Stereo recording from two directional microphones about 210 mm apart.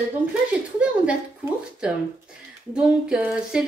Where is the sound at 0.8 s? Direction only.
5° right (ahead or behind).